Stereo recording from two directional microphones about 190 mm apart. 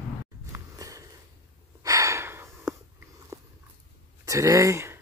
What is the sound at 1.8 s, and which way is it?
Gasp, 15° right (ahead or behind).